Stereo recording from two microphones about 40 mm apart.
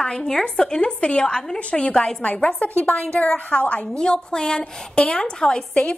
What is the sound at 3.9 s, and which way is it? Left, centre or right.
A woman's voice, left.